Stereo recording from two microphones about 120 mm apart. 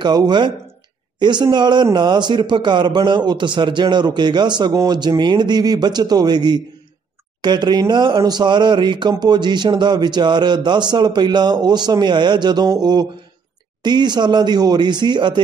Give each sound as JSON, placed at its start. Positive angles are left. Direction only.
{"t": 0.0, "sound": "a man's voice", "side_deg": -35}